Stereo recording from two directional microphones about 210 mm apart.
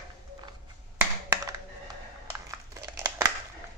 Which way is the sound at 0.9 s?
15° right (ahead or behind).